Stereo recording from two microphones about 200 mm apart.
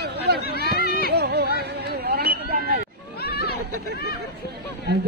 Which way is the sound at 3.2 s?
50° left (ahead or behind).